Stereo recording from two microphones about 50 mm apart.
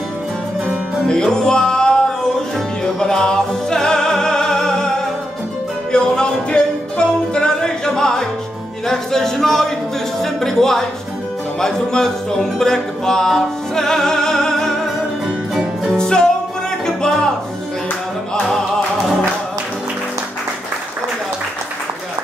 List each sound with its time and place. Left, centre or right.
1.0 s music: centre
8.8 s a sound: centre
10.2 s speech: centre
11.6 s music: centre
15.9 s music: centre
16.8 s speech: centre